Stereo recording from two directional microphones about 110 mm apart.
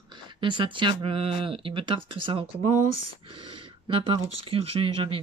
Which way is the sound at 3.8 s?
50° right (ahead or behind).